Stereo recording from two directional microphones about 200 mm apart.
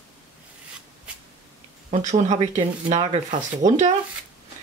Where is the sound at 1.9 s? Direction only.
35° right (ahead or behind).